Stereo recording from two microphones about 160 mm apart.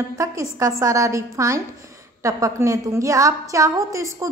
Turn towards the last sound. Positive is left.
turn(degrees=-20)  # may be behind; listen again after turning